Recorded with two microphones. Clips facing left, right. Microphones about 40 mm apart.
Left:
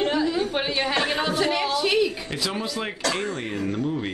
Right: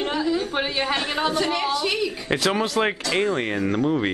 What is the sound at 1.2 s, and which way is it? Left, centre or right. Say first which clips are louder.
Speech: right 1 dB; centre.